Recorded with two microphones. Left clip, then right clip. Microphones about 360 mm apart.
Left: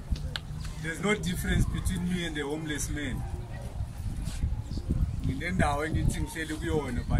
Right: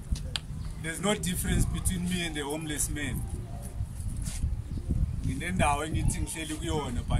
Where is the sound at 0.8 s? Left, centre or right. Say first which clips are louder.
Left 1 dB; centre.